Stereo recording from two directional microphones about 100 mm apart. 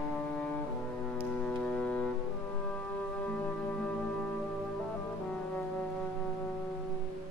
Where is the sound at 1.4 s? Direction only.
15° left (ahead or behind).